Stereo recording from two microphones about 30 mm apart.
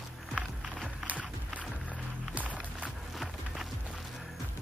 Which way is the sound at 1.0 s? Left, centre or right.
Right.